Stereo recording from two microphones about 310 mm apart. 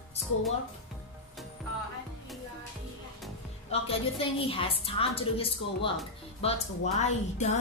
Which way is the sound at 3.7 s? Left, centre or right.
Centre.